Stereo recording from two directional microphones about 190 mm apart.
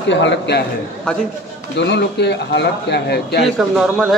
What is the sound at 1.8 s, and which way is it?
A man's voice, 65° left (ahead or behind).